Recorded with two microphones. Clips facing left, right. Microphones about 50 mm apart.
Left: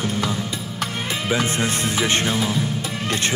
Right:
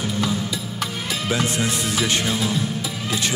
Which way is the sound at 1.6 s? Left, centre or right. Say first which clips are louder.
Left 1 dB; left.